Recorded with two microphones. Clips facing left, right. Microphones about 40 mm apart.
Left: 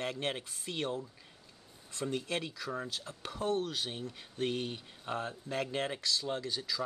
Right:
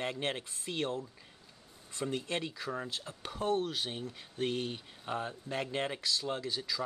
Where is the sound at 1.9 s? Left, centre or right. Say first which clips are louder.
Even; centre.